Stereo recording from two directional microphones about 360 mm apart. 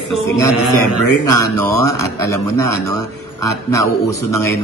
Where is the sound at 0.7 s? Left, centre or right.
Left.